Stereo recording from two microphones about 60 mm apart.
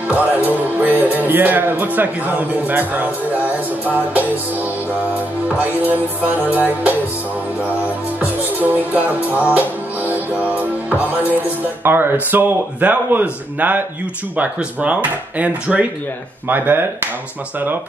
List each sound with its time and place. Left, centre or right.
0.1 s music: right
8.2 s music: right
10.3 s music: left
10.6 s music: right